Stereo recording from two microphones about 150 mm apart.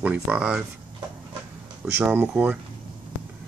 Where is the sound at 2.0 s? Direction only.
10° right (ahead or behind).